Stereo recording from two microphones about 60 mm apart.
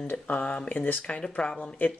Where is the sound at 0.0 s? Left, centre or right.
Left.